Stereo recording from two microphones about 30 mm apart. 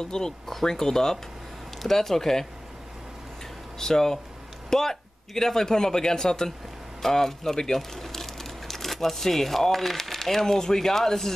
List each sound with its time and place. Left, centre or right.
0.0 s a man's voice: left
3.7 s a man's voice: centre